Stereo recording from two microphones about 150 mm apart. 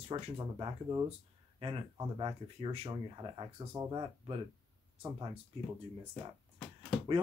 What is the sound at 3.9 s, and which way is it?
Speech, 35° right (ahead or behind).